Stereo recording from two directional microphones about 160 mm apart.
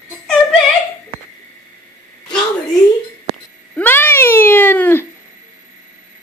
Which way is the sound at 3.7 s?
10° left (ahead or behind).